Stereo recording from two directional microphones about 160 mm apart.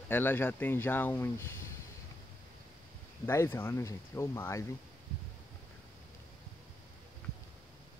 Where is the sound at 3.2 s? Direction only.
15° left (ahead or behind).